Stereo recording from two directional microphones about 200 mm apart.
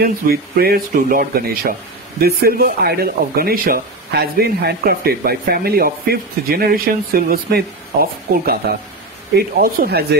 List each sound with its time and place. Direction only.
0.0 s speech: 50° right (ahead or behind)
9.6 s speech: 50° right (ahead or behind)